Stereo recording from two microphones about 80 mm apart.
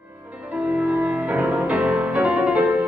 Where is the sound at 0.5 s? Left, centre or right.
Centre.